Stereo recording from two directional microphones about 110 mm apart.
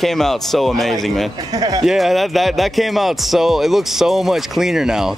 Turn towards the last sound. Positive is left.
turn(degrees=-5)  # may be behind; listen again after turning